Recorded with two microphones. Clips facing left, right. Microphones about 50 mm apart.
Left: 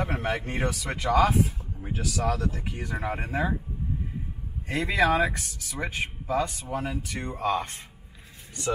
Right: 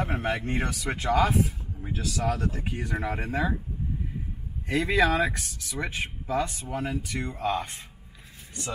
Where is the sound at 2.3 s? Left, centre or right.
Right.